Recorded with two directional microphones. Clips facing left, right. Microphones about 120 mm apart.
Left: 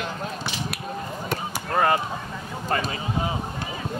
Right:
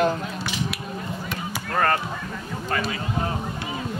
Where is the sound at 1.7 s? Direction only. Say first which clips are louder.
Left 1 dB; 10° left (ahead or behind).